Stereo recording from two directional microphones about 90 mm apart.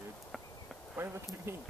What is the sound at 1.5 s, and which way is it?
Speech, 30° right (ahead or behind).